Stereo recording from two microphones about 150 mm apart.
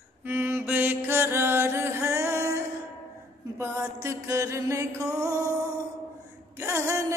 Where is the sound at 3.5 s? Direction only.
20° right (ahead or behind).